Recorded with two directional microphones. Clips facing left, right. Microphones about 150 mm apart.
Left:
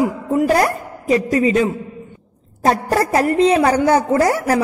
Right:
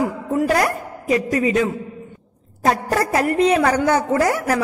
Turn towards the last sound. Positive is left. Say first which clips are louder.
# left 3 dB
turn(degrees=35)  # may be behind; listen again after turning